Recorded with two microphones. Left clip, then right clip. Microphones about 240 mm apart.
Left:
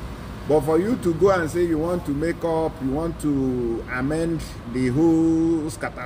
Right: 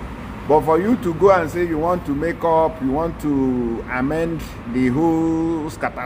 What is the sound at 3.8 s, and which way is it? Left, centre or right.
Speech, centre.